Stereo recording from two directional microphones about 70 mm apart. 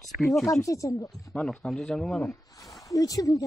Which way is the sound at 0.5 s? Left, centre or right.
Left.